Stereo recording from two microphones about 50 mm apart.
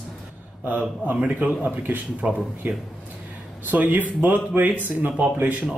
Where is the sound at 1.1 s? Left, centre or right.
Right.